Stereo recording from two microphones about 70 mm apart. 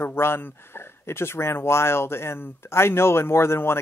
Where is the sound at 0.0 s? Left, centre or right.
Left.